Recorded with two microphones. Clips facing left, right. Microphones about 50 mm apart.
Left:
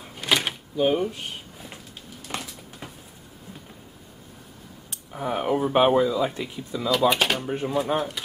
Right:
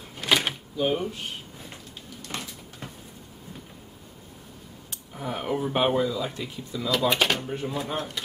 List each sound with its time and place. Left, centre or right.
0.1 s door: centre
0.7 s speech: centre
2.2 s a sound: centre
5.1 s speech: centre
6.9 s speech: centre
7.4 s speech: centre
7.7 s speech: centre